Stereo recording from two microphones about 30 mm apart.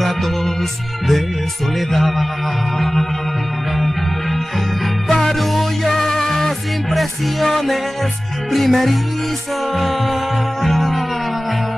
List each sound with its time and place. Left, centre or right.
0.0 s music: centre
5.0 s music: centre
5.3 s music: centre
6.9 s music: centre